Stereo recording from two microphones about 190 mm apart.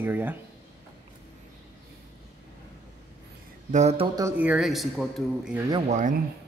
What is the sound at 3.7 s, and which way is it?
Speech, 35° right (ahead or behind).